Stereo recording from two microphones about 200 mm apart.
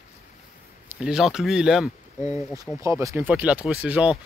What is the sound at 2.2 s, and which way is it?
Speech, 15° right (ahead or behind).